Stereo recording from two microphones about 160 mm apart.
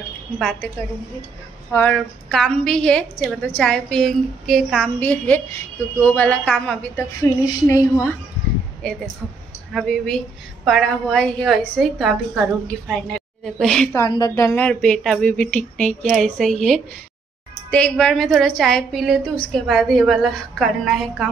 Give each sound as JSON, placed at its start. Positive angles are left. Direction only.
{"t": 1.7, "sound": "a woman's voice", "side_deg": 10}
{"t": 5.0, "sound": "a woman's voice", "side_deg": 10}
{"t": 7.4, "sound": "a woman's voice", "side_deg": 15}
{"t": 8.8, "sound": "a woman's voice", "side_deg": 5}
{"t": 13.9, "sound": "a woman's voice", "side_deg": 25}